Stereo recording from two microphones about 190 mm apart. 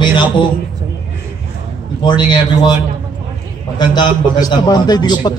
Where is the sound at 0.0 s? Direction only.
25° left (ahead or behind).